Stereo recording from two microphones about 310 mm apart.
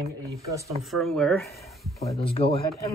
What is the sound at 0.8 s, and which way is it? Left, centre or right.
Speech, centre.